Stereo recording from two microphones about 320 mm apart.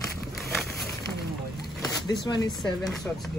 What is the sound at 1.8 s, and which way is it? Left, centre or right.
Speech, centre.